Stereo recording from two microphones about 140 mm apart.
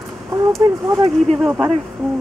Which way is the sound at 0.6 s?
20° right (ahead or behind).